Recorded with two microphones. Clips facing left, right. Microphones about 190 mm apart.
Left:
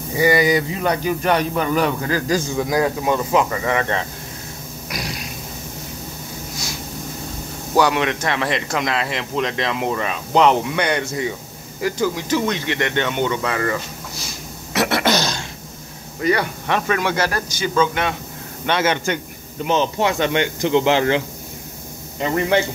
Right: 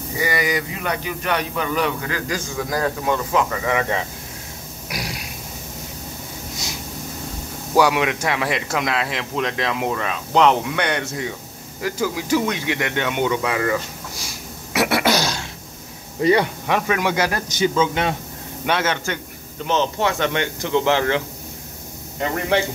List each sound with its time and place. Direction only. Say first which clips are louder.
0.2 s a man's voice: left 7 dB; 30° left (ahead or behind)
2.5 s speech: left 4 dB; 15° left (ahead or behind)
3.6 s speech: left 1 dB; 5° right (ahead or behind)
4.8 s a sound: left 1 dB; 10° right (ahead or behind)
7.7 s speech: even; 10° right (ahead or behind)
14.7 s grunt: even; 10° right (ahead or behind)
16.2 s speech: right 3 dB; 25° right (ahead or behind)
16.6 s speech: even; 10° right (ahead or behind)
18.7 s speech: left 1 dB; 10° right (ahead or behind)
19.6 s speech: left 2 dB; 15° left (ahead or behind)